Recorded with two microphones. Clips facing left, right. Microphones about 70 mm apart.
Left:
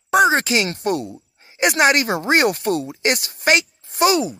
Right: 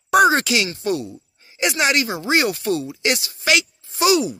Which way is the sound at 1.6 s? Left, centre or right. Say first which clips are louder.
Left 4 dB; left.